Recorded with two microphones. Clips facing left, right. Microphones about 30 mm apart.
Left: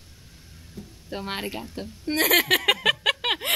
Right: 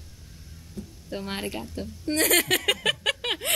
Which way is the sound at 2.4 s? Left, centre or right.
Centre.